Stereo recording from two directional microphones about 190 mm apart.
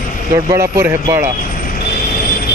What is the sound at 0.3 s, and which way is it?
Speech, 20° right (ahead or behind).